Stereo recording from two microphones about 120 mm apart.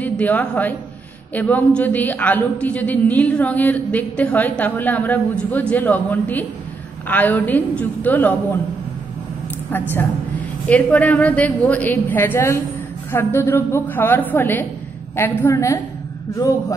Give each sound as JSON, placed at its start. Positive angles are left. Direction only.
{"t": 0.0, "sound": "a woman's voice", "side_deg": 15}
{"t": 9.7, "sound": "a woman's voice", "side_deg": 15}